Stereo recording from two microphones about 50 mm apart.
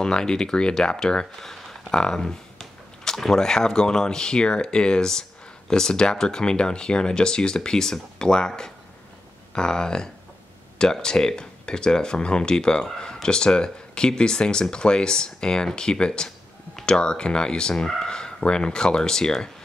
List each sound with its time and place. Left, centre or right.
0.0 s speech: centre